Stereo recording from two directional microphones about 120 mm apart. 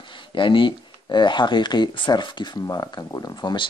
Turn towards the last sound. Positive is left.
turn(degrees=40)  # may be behind; listen again after turning